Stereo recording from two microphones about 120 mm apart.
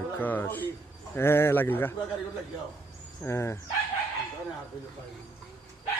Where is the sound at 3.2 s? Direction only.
20° left (ahead or behind).